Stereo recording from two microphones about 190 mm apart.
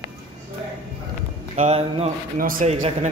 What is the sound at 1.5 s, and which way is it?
Speech, 35° right (ahead or behind).